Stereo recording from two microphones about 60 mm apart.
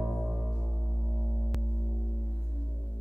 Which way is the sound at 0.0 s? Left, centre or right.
Centre.